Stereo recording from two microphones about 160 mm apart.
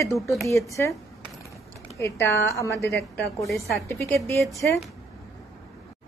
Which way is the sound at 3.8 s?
15° left (ahead or behind).